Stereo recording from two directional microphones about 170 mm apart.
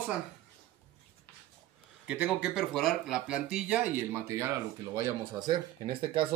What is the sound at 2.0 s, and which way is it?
Speech, 5° right (ahead or behind).